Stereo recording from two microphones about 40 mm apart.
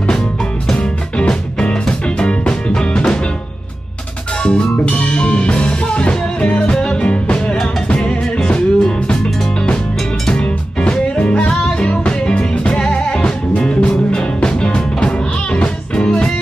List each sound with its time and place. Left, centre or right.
0.7 s music: left
4.4 s music: left